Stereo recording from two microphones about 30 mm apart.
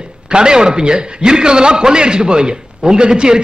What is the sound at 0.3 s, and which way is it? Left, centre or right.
A man's voice, right.